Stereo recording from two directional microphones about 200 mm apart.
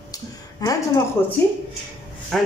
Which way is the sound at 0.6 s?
15° left (ahead or behind).